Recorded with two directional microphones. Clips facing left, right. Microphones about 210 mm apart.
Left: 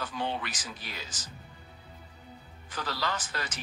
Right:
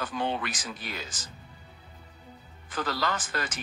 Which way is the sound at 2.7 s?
50° right (ahead or behind).